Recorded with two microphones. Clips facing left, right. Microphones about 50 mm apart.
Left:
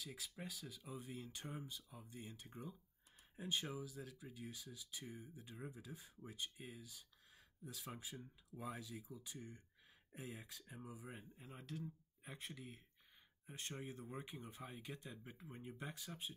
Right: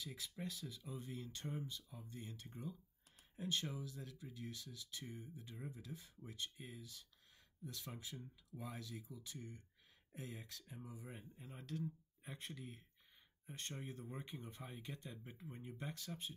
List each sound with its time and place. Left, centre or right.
0.0 s speech: centre
5.6 s speech: left
11.0 s speech: centre